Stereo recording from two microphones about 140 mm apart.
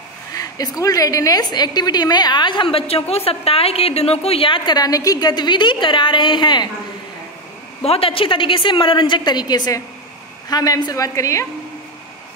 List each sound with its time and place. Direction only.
0.3 s a woman's voice: 25° left (ahead or behind)
7.8 s a woman's voice: 45° left (ahead or behind); by 11.4 s 25° left (ahead or behind)